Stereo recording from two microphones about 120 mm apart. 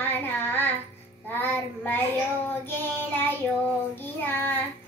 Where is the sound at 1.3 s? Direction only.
15° left (ahead or behind).